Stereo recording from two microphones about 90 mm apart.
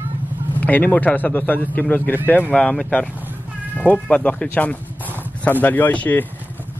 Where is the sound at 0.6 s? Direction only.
20° left (ahead or behind).